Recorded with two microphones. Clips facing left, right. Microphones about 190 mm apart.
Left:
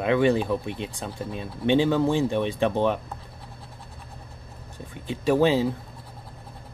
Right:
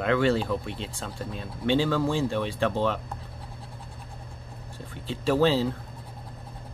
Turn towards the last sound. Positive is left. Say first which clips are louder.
# left 2 dB
turn(degrees=15)  # may be behind; listen again after turning